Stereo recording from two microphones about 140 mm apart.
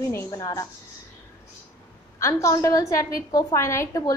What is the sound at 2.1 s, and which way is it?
A woman's voice, 20° left (ahead or behind).